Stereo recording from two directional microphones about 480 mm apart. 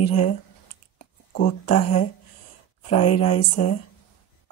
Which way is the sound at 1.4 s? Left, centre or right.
Centre.